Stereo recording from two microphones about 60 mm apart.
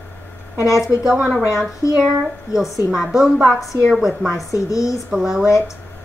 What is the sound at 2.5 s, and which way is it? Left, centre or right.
Speech, left.